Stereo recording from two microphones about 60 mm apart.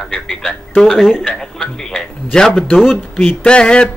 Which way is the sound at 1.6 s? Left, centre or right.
Centre.